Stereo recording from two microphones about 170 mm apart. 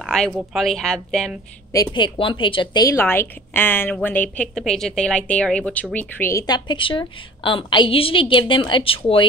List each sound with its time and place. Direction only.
0.0 s a sound: 5° left (ahead or behind)
0.5 s a woman's voice: centre (ahead or behind)
1.7 s a woman's voice: 20° left (ahead or behind)